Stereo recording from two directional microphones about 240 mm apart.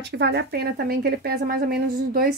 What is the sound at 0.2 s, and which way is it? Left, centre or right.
Speech, right.